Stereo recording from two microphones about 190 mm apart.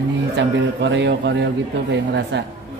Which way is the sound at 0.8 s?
65° right (ahead or behind).